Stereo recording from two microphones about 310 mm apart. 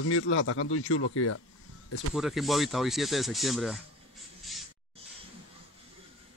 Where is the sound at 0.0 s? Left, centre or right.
Left.